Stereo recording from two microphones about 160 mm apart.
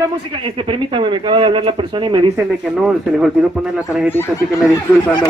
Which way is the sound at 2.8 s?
Centre (ahead or behind).